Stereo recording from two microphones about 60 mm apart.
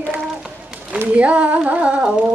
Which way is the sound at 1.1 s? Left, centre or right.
Right.